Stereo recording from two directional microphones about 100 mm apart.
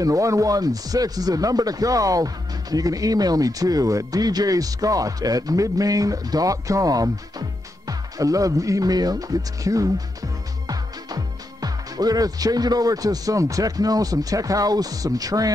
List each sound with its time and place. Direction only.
0.0 s speech: 35° right (ahead or behind)